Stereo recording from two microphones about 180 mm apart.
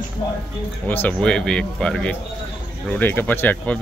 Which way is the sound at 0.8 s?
10° left (ahead or behind).